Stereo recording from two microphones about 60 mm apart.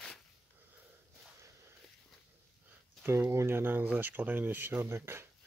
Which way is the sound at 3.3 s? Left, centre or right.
Right.